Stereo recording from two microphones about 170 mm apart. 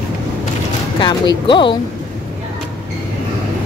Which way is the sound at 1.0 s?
30° left (ahead or behind).